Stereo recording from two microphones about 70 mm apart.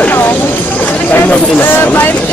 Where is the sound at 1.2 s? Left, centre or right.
Left.